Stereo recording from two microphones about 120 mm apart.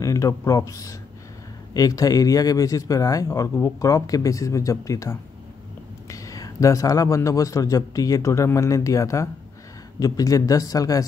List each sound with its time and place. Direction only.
0.0 s a man's voice: 25° left (ahead or behind)